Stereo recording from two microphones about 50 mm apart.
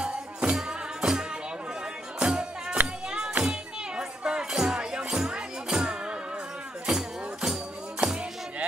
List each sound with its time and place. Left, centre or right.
0.0 s music: right
8.0 s music: right